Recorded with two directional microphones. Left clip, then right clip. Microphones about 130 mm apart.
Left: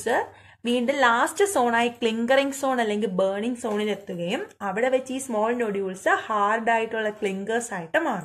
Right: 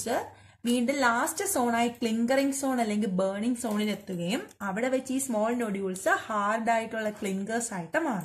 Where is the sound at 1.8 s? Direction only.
30° right (ahead or behind).